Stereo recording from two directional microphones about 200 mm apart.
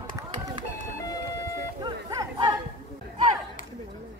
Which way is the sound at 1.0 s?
15° left (ahead or behind).